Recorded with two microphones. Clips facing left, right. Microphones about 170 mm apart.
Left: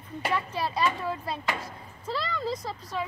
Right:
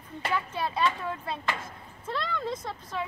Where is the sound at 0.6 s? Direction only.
Centre (ahead or behind).